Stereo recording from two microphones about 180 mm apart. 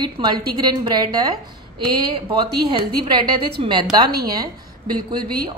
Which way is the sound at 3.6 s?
30° right (ahead or behind).